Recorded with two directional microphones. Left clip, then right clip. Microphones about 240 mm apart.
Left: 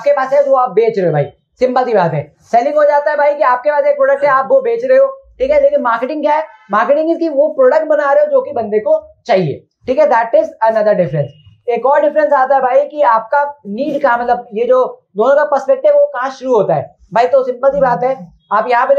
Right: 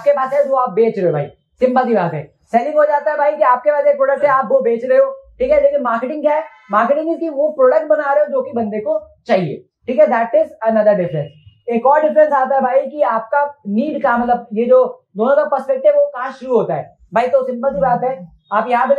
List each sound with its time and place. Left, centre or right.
0.0 s speech: left